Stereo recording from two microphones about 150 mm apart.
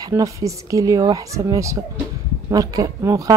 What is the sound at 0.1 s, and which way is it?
Speech, 20° right (ahead or behind).